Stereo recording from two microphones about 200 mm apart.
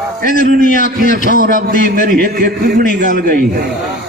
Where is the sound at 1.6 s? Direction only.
45° right (ahead or behind).